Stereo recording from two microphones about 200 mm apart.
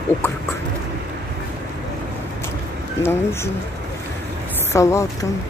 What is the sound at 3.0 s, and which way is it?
Speech, 10° left (ahead or behind).